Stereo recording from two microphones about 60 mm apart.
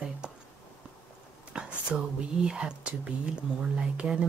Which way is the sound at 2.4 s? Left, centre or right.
Centre.